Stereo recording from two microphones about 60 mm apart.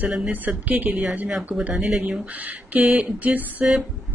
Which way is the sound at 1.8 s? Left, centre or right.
Centre.